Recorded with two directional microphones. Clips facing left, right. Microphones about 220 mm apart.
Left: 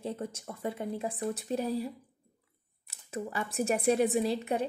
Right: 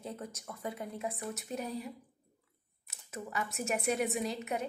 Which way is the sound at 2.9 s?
30° left (ahead or behind).